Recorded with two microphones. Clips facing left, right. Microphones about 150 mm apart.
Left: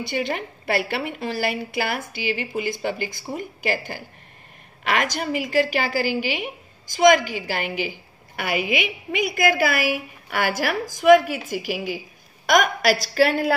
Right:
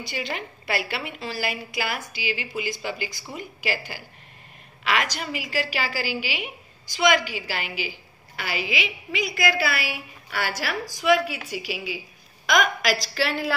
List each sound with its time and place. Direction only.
0.0 s a woman's voice: 55° left (ahead or behind)